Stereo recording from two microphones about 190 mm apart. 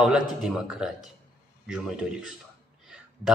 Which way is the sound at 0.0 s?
5° right (ahead or behind).